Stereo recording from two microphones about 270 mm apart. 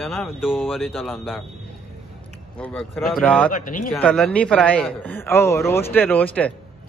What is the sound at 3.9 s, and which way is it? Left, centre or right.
Speech, centre.